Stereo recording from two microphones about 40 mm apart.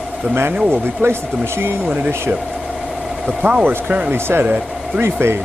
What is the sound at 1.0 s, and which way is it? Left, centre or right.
Speech, right.